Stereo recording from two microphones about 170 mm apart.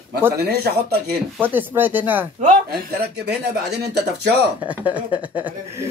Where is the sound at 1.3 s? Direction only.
10° right (ahead or behind).